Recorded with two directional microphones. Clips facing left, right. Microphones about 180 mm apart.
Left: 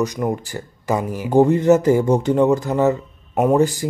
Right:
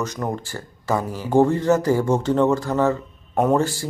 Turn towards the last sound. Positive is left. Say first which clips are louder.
# left 3 dB
turn(degrees=15)  # may be behind; listen again after turning